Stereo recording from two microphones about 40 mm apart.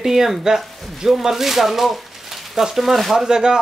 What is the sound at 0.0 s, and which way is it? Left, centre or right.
Speech, centre.